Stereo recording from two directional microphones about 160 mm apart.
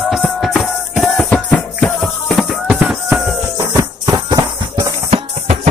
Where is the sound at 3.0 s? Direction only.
5° right (ahead or behind).